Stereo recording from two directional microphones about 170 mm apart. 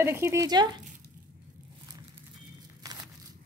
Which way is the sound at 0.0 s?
15° right (ahead or behind).